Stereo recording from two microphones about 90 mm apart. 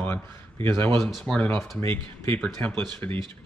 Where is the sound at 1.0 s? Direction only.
5° left (ahead or behind).